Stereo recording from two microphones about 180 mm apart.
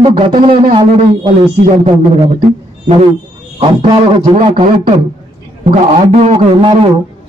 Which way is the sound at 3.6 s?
30° right (ahead or behind).